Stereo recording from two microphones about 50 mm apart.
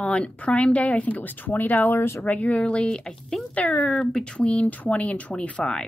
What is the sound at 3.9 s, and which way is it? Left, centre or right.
Speech, centre.